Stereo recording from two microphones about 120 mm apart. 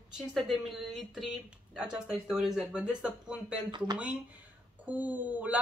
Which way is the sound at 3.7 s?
35° right (ahead or behind).